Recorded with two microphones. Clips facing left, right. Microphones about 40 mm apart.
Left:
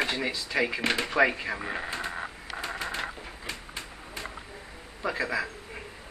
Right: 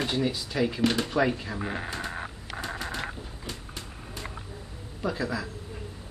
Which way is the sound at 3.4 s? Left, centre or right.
Left.